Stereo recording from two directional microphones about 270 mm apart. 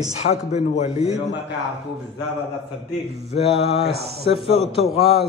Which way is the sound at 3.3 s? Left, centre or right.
Left.